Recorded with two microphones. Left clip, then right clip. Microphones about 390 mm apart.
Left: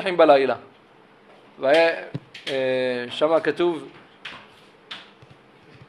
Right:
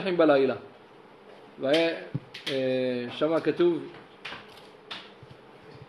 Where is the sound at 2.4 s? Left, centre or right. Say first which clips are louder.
Left 4 dB; left.